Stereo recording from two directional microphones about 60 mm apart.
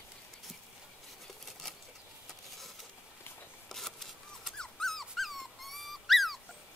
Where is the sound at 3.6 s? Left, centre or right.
Centre.